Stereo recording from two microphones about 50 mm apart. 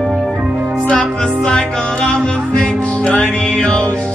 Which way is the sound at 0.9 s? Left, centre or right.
Centre.